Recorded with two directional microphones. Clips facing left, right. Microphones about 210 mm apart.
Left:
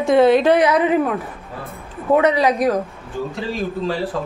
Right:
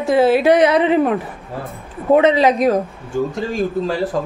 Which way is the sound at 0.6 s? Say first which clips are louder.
Right 2 dB; 25° right (ahead or behind).